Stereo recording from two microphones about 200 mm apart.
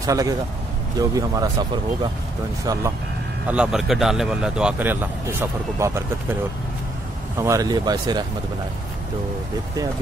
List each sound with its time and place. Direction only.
0.0 s speech: 15° right (ahead or behind)
2.6 s speech: 15° right (ahead or behind)
3.4 s speech: 5° right (ahead or behind)
7.3 s speech: 15° right (ahead or behind)